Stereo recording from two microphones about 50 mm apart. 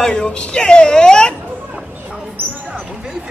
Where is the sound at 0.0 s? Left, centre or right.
Centre.